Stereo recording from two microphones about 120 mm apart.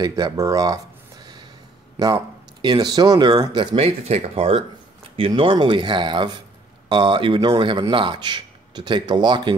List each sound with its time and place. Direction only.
0.0 s speech: 30° right (ahead or behind)
2.6 s speech: 35° right (ahead or behind)
3.7 s speech: 60° right (ahead or behind); by 9.6 s 40° right (ahead or behind)